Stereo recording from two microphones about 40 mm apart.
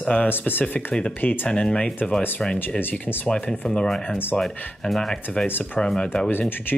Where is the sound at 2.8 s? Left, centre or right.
Left.